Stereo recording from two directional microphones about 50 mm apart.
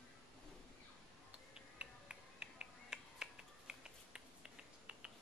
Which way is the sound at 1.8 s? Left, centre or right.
Right.